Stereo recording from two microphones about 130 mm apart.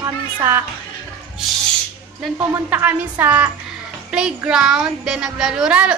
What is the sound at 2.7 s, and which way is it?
A woman's voice, 15° right (ahead or behind).